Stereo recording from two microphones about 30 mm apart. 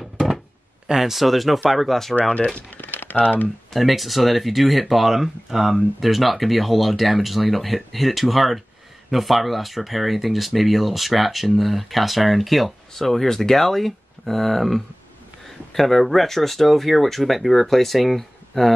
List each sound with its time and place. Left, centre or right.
0.9 s speech: centre
1.2 s speech: centre
2.5 s a sound: left
3.7 s speech: centre
18.5 s speech: centre